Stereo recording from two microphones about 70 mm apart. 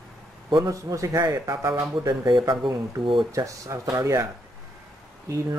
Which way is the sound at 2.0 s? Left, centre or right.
Right.